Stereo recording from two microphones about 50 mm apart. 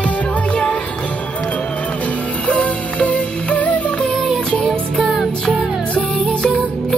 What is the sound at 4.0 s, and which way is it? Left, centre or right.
Music, centre.